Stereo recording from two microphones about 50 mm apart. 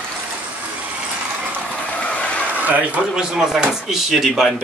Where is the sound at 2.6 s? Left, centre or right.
Right.